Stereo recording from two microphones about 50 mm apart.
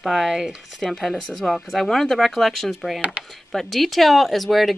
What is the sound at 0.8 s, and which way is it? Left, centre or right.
Speech, centre.